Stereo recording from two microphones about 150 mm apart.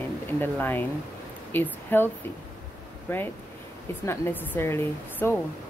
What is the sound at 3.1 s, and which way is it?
Speech, 15° left (ahead or behind).